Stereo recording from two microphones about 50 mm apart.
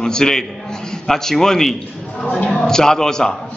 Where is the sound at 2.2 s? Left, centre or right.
Left.